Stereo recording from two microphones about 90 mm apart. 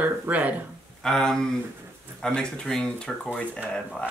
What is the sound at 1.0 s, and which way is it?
Speech, 5° left (ahead or behind).